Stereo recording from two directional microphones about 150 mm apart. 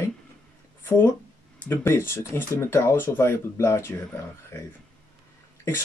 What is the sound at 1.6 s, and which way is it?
Speech, 15° left (ahead or behind).